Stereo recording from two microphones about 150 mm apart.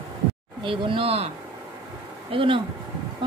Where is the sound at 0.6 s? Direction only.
35° right (ahead or behind).